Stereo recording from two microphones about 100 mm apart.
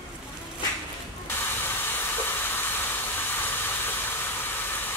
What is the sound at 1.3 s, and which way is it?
Steam, 20° left (ahead or behind).